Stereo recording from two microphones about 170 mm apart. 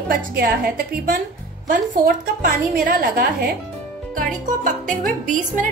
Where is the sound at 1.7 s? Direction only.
50° right (ahead or behind).